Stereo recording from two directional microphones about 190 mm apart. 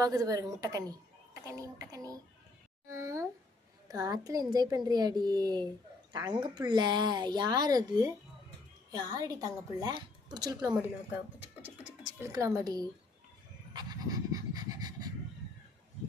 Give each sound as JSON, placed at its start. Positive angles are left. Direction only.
{"t": 0.0, "sound": "a woman's voice", "side_deg": -20}
{"t": 12.0, "sound": "music", "side_deg": -5}
{"t": 12.3, "sound": "speech", "side_deg": -15}
{"t": 13.7, "sound": "pant", "side_deg": -20}